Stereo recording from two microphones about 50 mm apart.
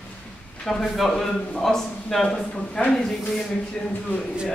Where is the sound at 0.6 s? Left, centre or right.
Centre.